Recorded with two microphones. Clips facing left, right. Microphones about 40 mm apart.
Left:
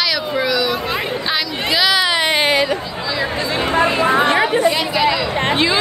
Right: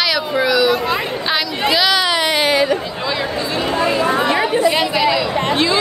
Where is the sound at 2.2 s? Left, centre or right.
Left.